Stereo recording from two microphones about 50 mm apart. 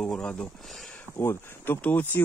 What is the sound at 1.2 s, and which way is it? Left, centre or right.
Speech, left.